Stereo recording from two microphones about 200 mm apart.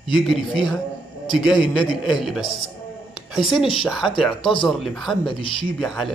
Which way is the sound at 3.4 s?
Centre (ahead or behind).